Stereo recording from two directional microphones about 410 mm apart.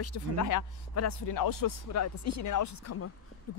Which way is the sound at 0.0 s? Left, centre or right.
Left.